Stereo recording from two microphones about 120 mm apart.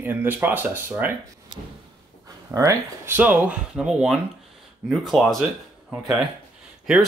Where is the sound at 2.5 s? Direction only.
25° right (ahead or behind).